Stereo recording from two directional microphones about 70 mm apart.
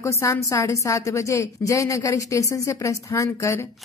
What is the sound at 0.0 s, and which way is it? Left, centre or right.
A woman's voice, left.